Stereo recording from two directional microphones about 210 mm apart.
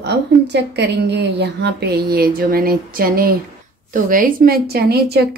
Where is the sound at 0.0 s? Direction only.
55° right (ahead or behind).